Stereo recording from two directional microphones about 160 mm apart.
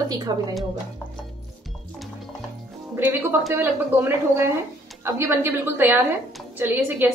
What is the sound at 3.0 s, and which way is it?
A woman's voice, 15° right (ahead or behind).